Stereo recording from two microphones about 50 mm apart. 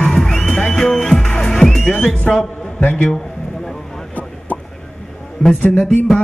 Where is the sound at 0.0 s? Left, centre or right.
Centre.